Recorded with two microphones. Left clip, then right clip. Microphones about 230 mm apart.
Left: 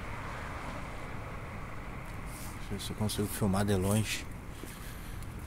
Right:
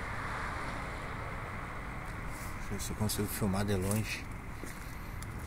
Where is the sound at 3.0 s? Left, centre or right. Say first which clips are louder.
Left 2 dB; centre.